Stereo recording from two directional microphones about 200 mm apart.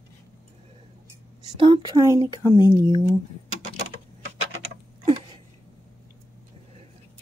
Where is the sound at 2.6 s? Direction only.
20° right (ahead or behind).